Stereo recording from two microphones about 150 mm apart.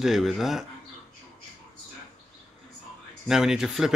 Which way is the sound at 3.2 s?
5° right (ahead or behind).